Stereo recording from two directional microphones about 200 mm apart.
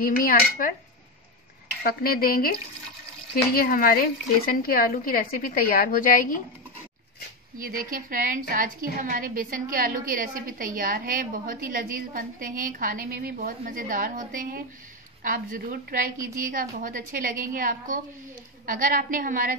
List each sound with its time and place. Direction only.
0.0 s a woman's voice: 45° left (ahead or behind)
1.8 s a woman's voice: 50° left (ahead or behind)
3.5 s a woman's voice: 45° left (ahead or behind)
7.5 s a woman's voice: 45° right (ahead or behind)